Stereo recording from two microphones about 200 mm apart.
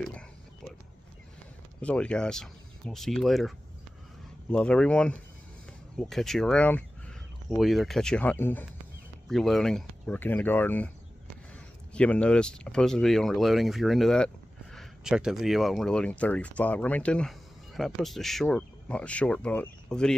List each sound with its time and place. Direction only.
1.8 s speech: 5° left (ahead or behind)
11.9 s speech: 5° left (ahead or behind)